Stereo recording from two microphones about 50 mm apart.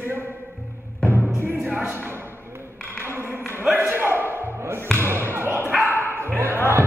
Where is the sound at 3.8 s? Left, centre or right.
Right.